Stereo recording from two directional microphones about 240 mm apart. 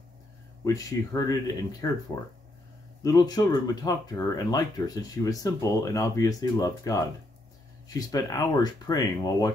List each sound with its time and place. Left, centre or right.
0.7 s speech: centre